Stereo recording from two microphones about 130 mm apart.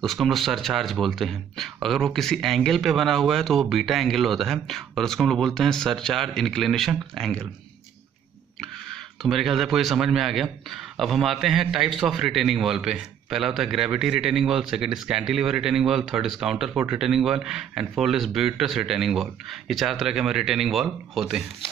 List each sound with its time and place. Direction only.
0.0 s speech: centre (ahead or behind)
8.8 s speech: centre (ahead or behind)